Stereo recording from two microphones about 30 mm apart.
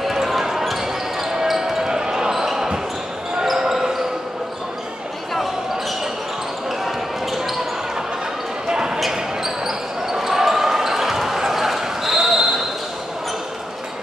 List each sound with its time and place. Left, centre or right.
0.0 s basketball bounce: centre
1.9 s basketball bounce: right
6.8 s basketball bounce: centre
8.6 s basketball bounce: right
9.1 s basketball bounce: centre